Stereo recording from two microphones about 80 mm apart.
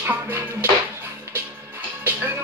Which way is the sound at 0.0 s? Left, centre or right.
Right.